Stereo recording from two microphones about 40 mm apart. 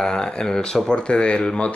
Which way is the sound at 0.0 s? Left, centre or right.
Centre.